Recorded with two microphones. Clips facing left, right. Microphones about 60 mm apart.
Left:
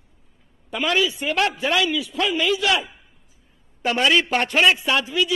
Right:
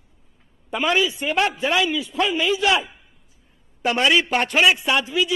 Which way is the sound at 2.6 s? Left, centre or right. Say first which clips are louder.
Right 2 dB; centre.